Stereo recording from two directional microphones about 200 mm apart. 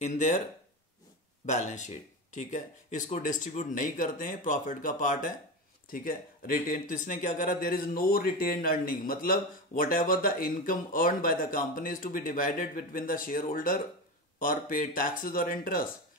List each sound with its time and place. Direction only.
0.0 s speech: 35° left (ahead or behind)
1.4 s speech: 35° left (ahead or behind)